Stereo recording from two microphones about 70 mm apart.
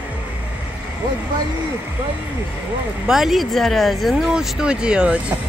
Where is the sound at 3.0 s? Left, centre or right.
Centre.